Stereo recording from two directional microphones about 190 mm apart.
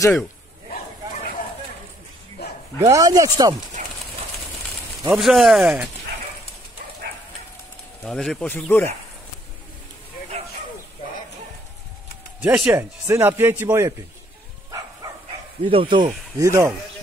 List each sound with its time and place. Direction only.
2.8 s speech: 20° right (ahead or behind)
3.8 s clip-clop: 40° right (ahead or behind)
5.1 s speech: centre (ahead or behind)
8.0 s speech: 5° left (ahead or behind)
12.4 s speech: 5° right (ahead or behind)
15.0 s bow-wow: 20° right (ahead or behind)
15.6 s speech: 25° right (ahead or behind)
16.3 s speech: 15° right (ahead or behind)